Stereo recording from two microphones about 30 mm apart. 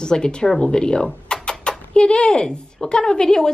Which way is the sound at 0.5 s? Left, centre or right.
Left.